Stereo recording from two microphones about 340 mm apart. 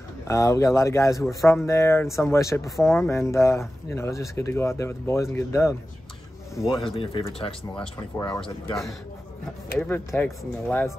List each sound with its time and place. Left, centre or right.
0.3 s a man's voice: centre
6.8 s speech: centre
9.8 s speech: centre